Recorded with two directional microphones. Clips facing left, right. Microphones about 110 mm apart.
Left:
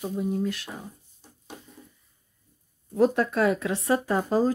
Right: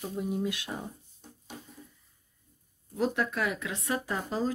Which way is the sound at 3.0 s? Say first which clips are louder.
Left 8 dB; 40° left (ahead or behind).